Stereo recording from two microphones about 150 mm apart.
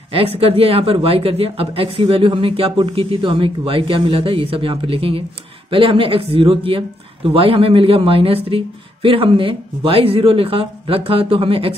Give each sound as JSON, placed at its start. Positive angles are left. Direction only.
{"t": 0.1, "sound": "a woman's voice", "side_deg": -40}